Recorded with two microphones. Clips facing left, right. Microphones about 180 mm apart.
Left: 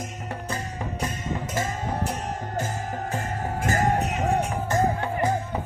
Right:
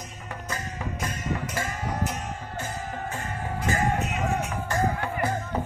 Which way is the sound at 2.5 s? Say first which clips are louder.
Left 4 dB; 40° left (ahead or behind).